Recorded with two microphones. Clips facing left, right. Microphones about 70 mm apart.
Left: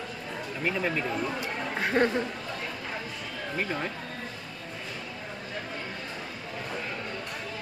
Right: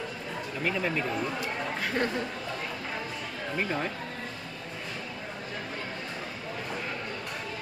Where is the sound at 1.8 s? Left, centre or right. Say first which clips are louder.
Left 6 dB; left.